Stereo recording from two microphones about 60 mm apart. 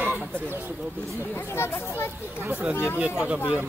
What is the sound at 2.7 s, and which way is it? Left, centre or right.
Speech, left.